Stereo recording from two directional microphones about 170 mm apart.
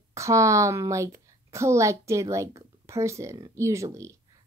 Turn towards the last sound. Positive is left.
turn(degrees=-15)  # may be behind; listen again after turning